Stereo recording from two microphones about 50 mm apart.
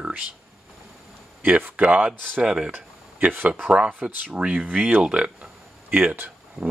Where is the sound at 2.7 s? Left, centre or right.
Right.